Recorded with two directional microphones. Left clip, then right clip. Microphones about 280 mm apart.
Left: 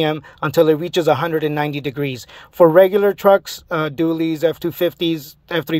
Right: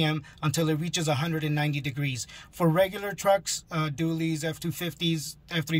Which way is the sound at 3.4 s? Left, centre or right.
Centre.